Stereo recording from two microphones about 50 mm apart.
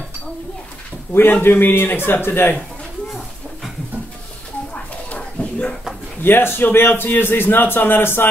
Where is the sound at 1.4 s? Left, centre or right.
Left.